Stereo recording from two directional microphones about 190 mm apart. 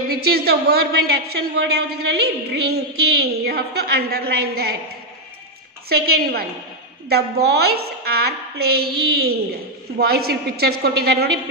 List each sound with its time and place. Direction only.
0.1 s a woman's voice: 55° right (ahead or behind)
5.9 s a woman's voice: 55° right (ahead or behind)